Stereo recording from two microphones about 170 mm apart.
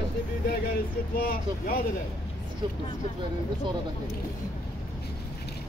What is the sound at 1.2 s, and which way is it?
Speech, 60° left (ahead or behind).